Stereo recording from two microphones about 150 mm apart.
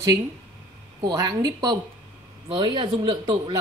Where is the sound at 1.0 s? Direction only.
25° right (ahead or behind).